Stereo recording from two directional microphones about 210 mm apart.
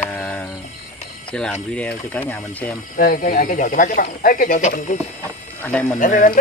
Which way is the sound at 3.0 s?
45° left (ahead or behind).